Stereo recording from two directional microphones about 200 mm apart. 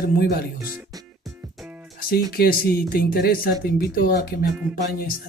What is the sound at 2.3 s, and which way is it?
A man's voice, 50° left (ahead or behind).